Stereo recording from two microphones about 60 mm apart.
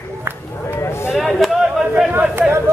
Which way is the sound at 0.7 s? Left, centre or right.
Left.